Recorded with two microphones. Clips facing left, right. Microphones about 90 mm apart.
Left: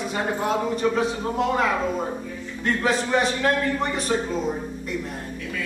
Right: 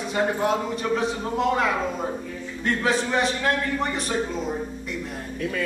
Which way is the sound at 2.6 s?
Centre (ahead or behind).